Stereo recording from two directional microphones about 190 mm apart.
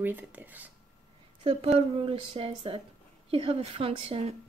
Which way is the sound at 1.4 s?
30° right (ahead or behind).